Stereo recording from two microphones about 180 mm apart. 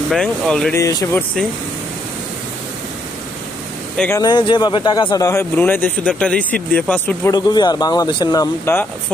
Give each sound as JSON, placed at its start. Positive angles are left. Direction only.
{"t": 0.1, "sound": "speech", "side_deg": 0}
{"t": 0.7, "sound": "speech", "side_deg": 15}
{"t": 3.9, "sound": "speech", "side_deg": 5}
{"t": 4.2, "sound": "speech", "side_deg": 25}
{"t": 7.3, "sound": "speech", "side_deg": 25}